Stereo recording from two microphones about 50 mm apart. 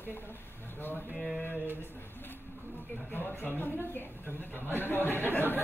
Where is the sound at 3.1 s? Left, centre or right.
Left.